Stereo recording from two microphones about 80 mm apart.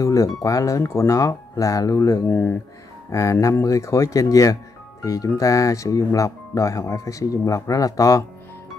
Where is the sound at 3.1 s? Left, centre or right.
Left.